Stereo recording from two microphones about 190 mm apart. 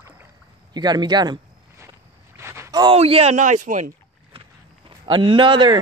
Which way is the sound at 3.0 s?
30° right (ahead or behind).